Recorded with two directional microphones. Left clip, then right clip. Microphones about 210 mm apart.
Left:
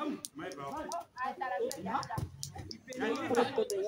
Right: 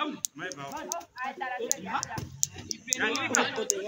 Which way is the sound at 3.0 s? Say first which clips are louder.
Right 3 dB; 25° left (ahead or behind).